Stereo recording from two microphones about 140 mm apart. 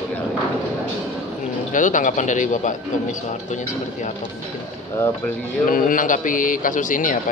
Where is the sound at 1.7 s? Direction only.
65° left (ahead or behind).